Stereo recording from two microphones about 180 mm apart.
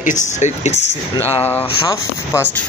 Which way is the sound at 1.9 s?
15° left (ahead or behind).